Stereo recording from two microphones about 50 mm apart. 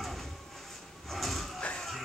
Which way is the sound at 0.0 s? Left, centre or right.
Centre.